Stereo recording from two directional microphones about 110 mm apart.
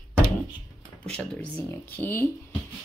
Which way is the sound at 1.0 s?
15° left (ahead or behind).